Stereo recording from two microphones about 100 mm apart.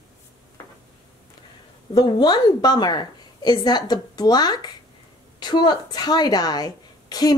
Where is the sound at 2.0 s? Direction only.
45° left (ahead or behind).